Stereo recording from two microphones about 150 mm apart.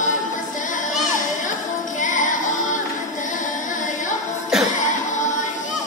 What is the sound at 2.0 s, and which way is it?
Music, 60° left (ahead or behind).